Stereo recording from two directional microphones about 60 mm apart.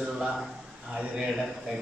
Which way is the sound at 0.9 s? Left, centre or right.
Centre.